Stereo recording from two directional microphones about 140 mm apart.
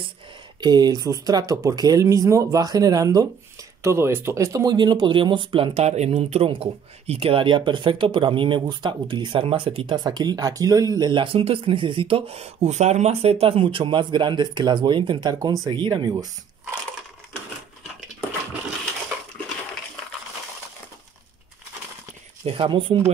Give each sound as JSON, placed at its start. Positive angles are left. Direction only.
{"t": 0.6, "sound": "speech", "side_deg": -30}
{"t": 22.4, "sound": "speech", "side_deg": -40}